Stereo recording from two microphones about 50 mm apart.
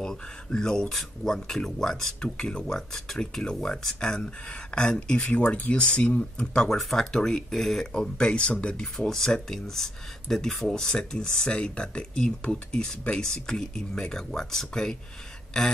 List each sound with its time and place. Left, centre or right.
0.0 s speech: centre
7.9 s speech: centre